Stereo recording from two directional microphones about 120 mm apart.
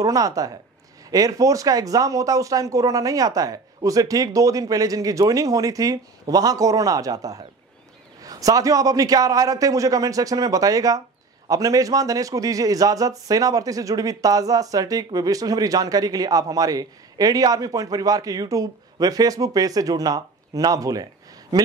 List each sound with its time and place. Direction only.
0.0 s a man's voice: 30° right (ahead or behind)